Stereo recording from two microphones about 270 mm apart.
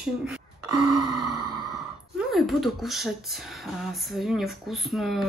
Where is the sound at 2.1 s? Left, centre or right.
Centre.